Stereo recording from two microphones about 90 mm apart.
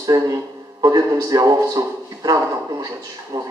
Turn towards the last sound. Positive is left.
turn(degrees=-40)  # may be behind; listen again after turning